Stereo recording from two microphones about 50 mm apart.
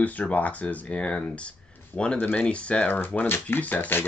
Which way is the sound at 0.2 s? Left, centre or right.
Left.